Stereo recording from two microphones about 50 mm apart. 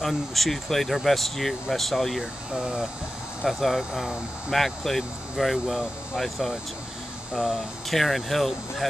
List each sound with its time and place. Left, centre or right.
0.0 s speech: centre
2.5 s speech: centre
3.4 s speech: centre